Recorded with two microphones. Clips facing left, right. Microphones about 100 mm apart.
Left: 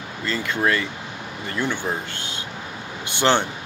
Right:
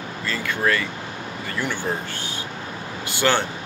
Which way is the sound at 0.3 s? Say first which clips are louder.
Left 1 dB; 20° left (ahead or behind).